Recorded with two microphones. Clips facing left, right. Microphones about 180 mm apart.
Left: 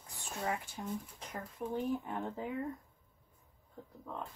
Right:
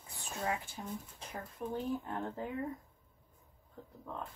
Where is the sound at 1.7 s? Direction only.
15° left (ahead or behind).